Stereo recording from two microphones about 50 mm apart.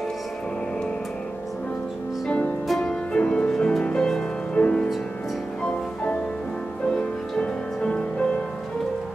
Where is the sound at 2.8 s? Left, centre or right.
Centre.